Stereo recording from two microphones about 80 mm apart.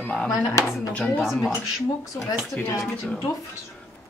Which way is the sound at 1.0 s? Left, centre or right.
Centre.